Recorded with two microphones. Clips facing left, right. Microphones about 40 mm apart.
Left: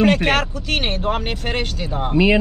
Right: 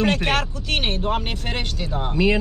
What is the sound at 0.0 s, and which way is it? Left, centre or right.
Speech, centre.